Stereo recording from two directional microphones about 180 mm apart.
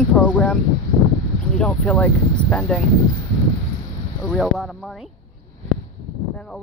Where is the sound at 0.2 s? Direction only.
10° left (ahead or behind).